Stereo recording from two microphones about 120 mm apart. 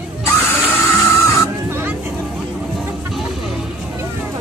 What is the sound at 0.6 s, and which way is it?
Music, 20° left (ahead or behind).